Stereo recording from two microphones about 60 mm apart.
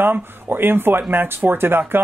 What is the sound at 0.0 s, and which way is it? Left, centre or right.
Speech, right.